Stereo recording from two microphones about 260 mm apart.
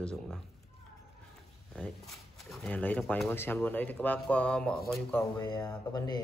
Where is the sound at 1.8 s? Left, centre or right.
Centre.